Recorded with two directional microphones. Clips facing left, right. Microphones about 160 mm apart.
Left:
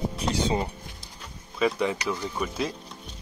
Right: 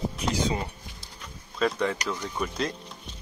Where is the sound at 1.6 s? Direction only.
10° left (ahead or behind).